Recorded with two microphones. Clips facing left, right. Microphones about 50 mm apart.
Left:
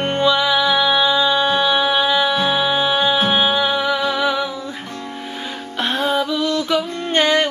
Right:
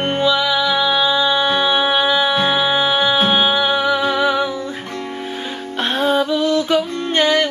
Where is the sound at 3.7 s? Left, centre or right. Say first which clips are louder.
Right 2 dB; centre.